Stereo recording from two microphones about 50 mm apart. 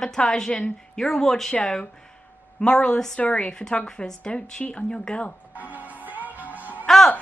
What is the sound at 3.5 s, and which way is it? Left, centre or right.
A woman's voice, centre.